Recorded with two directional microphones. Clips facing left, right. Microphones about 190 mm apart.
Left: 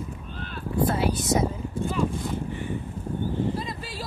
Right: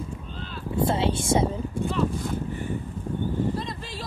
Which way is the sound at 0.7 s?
25° right (ahead or behind).